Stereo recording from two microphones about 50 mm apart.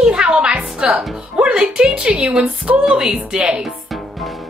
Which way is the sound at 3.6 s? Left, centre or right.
Centre.